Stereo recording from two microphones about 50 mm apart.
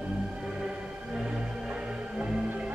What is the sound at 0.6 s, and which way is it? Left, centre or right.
Music, centre.